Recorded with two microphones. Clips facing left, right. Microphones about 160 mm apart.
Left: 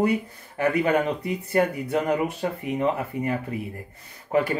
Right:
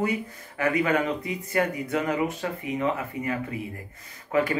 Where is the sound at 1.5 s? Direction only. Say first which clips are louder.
Left 3 dB; 35° left (ahead or behind).